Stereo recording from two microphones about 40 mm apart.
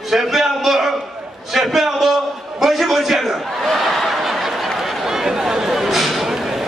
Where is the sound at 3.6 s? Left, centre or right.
Centre.